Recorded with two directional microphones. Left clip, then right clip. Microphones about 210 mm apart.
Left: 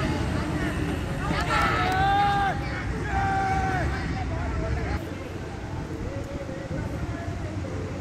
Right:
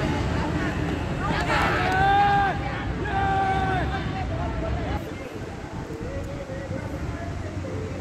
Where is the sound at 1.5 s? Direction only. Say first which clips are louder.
Right 1 dB; 25° left (ahead or behind).